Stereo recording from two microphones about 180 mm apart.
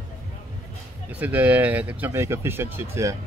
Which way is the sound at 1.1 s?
10° right (ahead or behind).